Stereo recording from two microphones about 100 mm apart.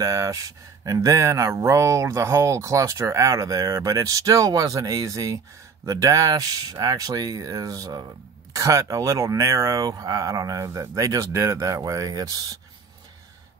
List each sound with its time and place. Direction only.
0.0 s speech: 35° right (ahead or behind)